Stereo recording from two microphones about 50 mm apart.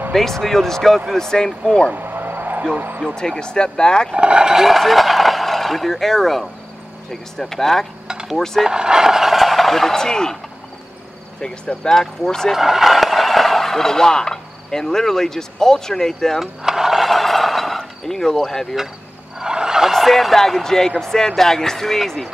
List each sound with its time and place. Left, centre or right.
0.1 s speech: centre
2.0 s vehicle: right
3.2 s speech: centre
4.1 s speech: centre
8.6 s speech: centre
11.3 s speech: centre
12.5 s speech: centre
16.3 s a sound: centre
19.3 s a sound: centre
19.9 s speech: centre